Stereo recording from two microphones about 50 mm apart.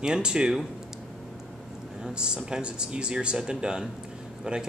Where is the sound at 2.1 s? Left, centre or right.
Centre.